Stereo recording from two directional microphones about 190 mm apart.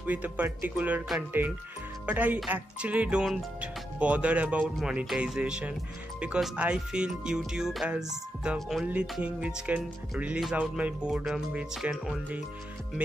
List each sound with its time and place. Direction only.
0.0 s speech: 10° right (ahead or behind)